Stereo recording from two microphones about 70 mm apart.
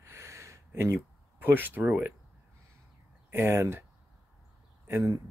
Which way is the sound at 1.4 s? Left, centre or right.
Right.